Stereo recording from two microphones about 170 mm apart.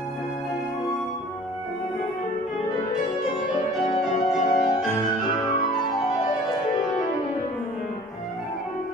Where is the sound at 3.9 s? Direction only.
40° left (ahead or behind).